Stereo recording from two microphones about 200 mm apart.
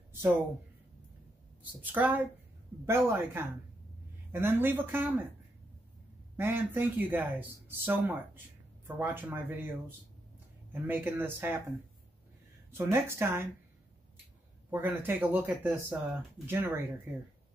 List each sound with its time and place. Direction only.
1.6 s speech: 10° right (ahead or behind)
6.3 s speech: 10° right (ahead or behind)
12.7 s speech: 10° right (ahead or behind)
14.7 s speech: 10° right (ahead or behind)